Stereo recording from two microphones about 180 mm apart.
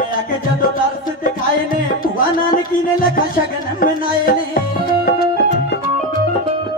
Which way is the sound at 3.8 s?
50° left (ahead or behind).